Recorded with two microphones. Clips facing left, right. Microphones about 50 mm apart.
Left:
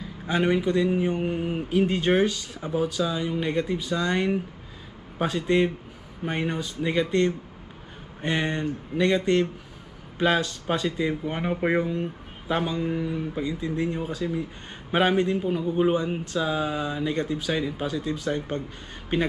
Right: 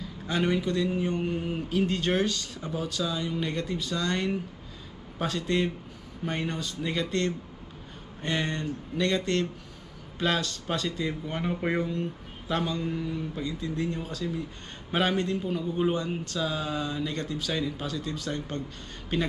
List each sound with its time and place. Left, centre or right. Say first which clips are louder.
0.0 s speech: left 3 dB; centre